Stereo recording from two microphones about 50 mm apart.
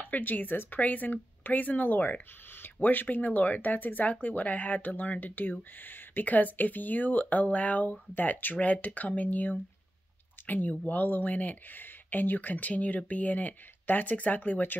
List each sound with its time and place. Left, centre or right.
0.0 s speech: left